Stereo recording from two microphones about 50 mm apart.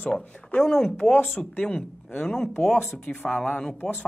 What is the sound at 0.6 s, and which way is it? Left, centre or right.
Speech, centre.